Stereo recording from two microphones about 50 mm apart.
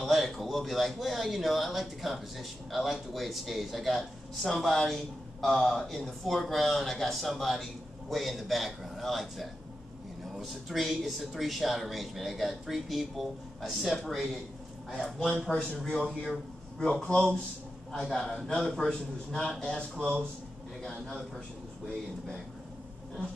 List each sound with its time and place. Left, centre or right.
0.0 s speech: centre
15.5 s a man's voice: centre